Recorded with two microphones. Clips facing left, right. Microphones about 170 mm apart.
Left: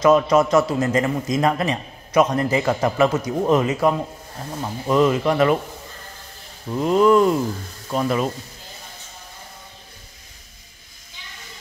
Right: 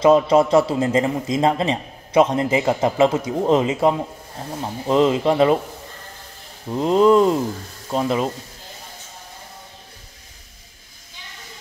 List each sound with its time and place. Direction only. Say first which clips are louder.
0.0 s a man's voice: right 1 dB; 25° right (ahead or behind)
6.7 s a man's voice: right 1 dB; 25° right (ahead or behind)